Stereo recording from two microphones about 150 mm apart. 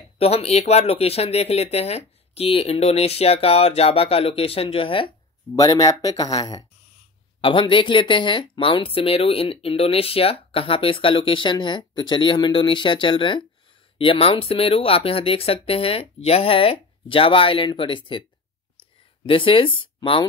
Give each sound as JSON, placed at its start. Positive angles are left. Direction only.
{"t": 0.2, "sound": "speech", "side_deg": 40}
{"t": 5.6, "sound": "speech", "side_deg": 25}
{"t": 7.4, "sound": "speech", "side_deg": 35}
{"t": 19.2, "sound": "speech", "side_deg": 35}